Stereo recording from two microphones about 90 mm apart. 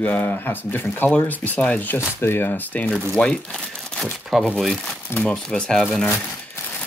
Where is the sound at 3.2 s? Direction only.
10° left (ahead or behind).